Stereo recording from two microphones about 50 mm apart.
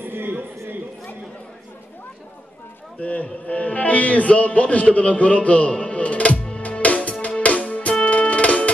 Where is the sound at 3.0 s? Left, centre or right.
Left.